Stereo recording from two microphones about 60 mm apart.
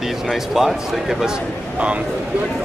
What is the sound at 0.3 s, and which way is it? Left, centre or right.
Speech, centre.